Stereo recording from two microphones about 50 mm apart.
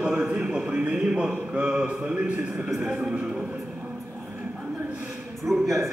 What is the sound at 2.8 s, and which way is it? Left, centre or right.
Speech, centre.